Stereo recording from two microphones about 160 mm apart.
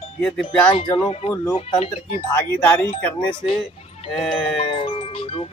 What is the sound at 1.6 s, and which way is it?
Speech, 45° left (ahead or behind).